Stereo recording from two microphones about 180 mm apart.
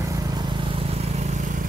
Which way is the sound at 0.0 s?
20° right (ahead or behind).